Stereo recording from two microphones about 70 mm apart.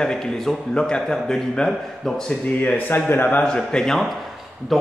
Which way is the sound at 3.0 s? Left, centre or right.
Left.